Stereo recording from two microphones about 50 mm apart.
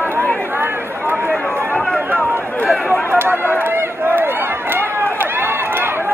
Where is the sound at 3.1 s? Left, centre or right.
Right.